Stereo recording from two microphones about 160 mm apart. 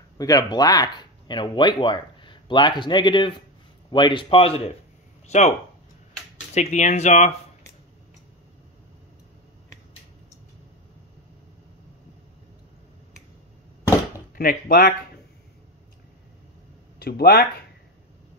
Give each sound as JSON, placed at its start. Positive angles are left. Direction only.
{"t": 0.2, "sound": "a man's voice", "side_deg": 25}
{"t": 6.5, "sound": "speech", "side_deg": 45}
{"t": 14.3, "sound": "speech", "side_deg": 65}
{"t": 17.0, "sound": "speech", "side_deg": 80}